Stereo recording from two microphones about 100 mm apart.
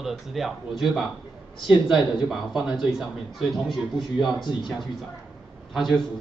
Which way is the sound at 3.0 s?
5° right (ahead or behind).